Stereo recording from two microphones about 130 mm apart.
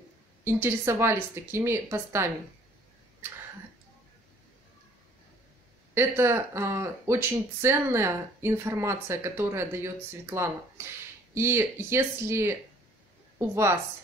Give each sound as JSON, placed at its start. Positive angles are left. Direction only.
{"t": 0.4, "sound": "speech", "side_deg": -20}
{"t": 5.9, "sound": "speech", "side_deg": -20}